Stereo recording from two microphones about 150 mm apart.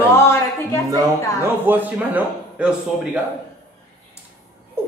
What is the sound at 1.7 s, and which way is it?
A woman's voice, 10° right (ahead or behind).